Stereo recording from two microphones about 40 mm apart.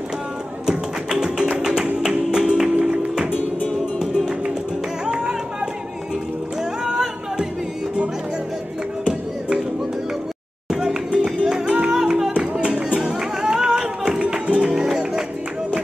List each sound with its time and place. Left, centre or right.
0.7 s music: centre
5.0 s music: centre
6.8 s a sound: centre
10.7 s music: centre
12.3 s music: right
13.4 s music: centre
14.3 s music: right
14.7 s music: centre